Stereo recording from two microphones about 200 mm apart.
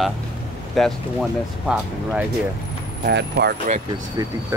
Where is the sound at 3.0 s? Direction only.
55° right (ahead or behind).